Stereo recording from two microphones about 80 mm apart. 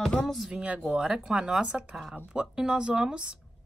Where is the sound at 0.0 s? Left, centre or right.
Centre.